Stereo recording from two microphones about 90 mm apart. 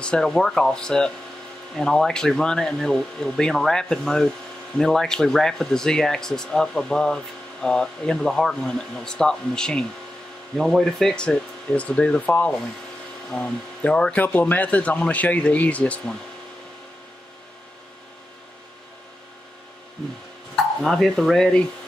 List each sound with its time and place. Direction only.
0.0 s speech: 10° left (ahead or behind)
20.8 s speech: 5° left (ahead or behind)